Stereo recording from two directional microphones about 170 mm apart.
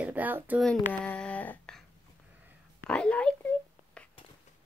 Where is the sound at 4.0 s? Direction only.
5° left (ahead or behind).